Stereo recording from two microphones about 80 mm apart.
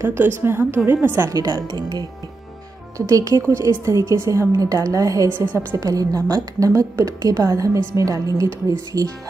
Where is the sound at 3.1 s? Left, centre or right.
Right.